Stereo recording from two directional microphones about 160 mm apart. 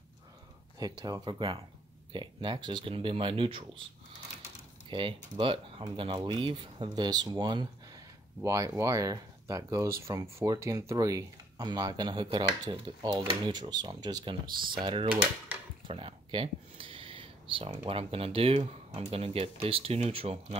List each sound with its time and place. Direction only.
0.7 s speech: 25° right (ahead or behind); by 20.5 s 40° right (ahead or behind)